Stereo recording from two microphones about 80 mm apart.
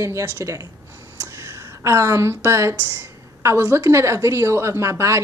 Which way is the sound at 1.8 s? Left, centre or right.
Right.